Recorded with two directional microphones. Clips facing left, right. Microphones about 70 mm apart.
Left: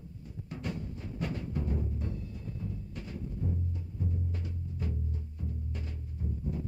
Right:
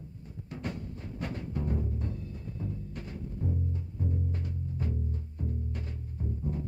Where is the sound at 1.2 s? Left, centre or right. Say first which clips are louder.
Left 1 dB; right.